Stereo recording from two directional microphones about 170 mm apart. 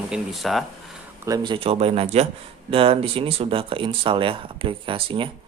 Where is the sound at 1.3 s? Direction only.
25° right (ahead or behind).